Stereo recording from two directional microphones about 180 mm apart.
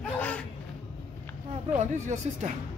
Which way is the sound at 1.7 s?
40° right (ahead or behind).